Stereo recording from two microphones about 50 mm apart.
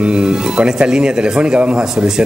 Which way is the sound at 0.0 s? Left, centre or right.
Centre.